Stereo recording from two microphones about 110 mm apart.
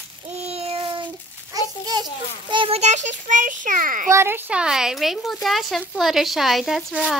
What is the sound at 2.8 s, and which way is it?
Speech, 90° right.